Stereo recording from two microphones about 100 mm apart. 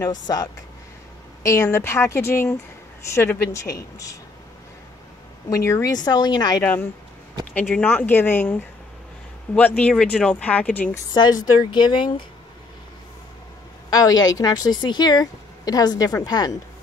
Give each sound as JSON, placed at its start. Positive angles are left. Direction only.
{"t": 0.0, "sound": "speech", "side_deg": 40}
{"t": 1.4, "sound": "speech", "side_deg": 30}
{"t": 5.5, "sound": "speech", "side_deg": 30}
{"t": 5.9, "sound": "speech", "side_deg": 45}
{"t": 6.6, "sound": "speech", "side_deg": 15}
{"t": 11.1, "sound": "speech", "side_deg": 45}
{"t": 13.8, "sound": "speech", "side_deg": 40}